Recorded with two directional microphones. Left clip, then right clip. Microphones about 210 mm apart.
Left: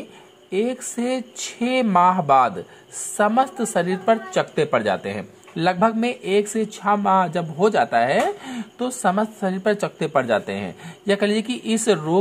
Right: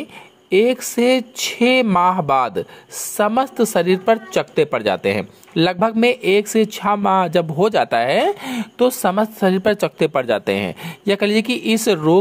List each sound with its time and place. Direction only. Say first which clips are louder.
0.5 s a woman's voice: right 8 dB; 35° right (ahead or behind)